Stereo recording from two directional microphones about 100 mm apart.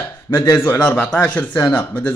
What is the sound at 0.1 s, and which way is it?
A man's voice, 25° left (ahead or behind).